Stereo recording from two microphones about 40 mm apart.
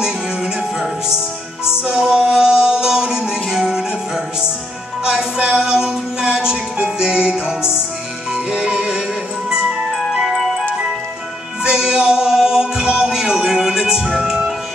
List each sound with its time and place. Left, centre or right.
0.0 s music: centre
5.0 s music: right
10.3 s music: centre
11.6 s music: centre